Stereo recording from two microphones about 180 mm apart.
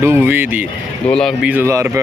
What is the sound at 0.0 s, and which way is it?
Speech, 15° right (ahead or behind).